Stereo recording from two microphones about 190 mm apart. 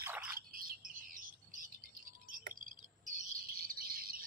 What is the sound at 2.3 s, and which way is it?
Cricket, 45° right (ahead or behind).